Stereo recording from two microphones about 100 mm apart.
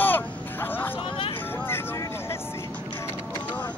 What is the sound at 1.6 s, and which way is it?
Vehicle, 25° left (ahead or behind).